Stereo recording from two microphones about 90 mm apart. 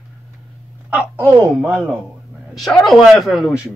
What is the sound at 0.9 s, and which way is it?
Speech, 15° right (ahead or behind).